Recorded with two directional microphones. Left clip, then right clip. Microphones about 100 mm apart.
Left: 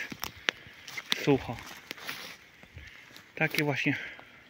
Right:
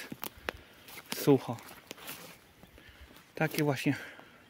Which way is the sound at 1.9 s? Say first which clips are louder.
Left 7 dB; 15° left (ahead or behind).